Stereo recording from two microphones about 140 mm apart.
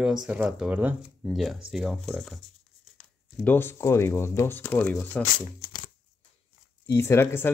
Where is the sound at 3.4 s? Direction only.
15° left (ahead or behind).